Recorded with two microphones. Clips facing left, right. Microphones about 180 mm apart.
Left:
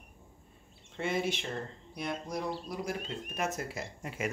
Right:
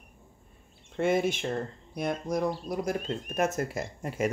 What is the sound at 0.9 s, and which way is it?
Speech, 50° right (ahead or behind).